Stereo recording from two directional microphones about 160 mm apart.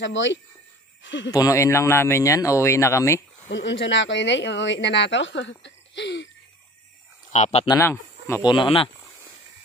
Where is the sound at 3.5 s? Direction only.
90° left.